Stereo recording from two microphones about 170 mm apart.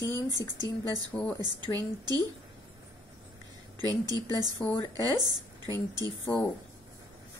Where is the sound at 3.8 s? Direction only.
25° right (ahead or behind).